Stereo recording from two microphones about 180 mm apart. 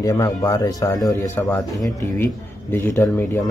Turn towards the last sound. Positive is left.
turn(degrees=10)  # may be behind; listen again after turning